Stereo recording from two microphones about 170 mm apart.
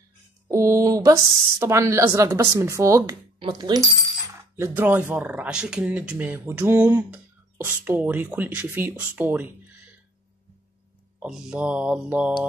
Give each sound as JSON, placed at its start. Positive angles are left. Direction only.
{"t": 0.5, "sound": "speech", "side_deg": -15}
{"t": 11.1, "sound": "speech", "side_deg": -5}